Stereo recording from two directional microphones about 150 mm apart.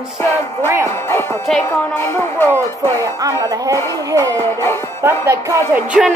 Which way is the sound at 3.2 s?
25° right (ahead or behind).